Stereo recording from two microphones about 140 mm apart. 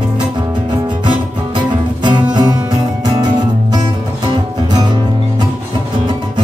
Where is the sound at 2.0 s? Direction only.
35° right (ahead or behind).